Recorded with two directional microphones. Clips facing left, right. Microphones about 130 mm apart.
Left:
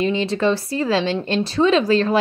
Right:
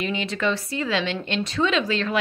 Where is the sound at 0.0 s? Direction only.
30° left (ahead or behind).